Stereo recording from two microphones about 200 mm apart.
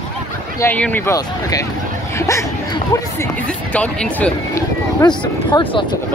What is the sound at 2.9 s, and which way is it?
Speech, 10° left (ahead or behind).